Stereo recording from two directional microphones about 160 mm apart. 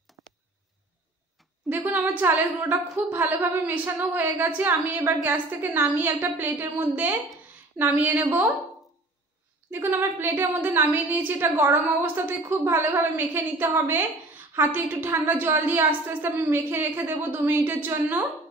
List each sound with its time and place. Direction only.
0.2 s a sound: 20° right (ahead or behind)
1.7 s a woman's voice: 10° right (ahead or behind)
9.7 s a woman's voice: 15° right (ahead or behind)